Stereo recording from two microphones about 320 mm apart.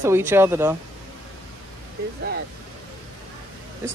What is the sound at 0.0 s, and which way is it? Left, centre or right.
Speech, centre.